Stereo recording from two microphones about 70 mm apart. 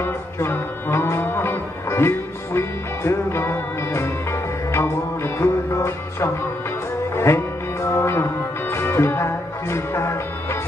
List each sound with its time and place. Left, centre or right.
0.0 s music: left